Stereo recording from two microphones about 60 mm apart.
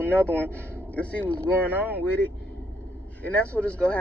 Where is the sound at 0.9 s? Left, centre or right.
Left.